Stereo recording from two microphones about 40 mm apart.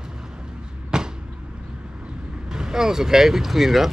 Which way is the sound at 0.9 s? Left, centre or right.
Centre.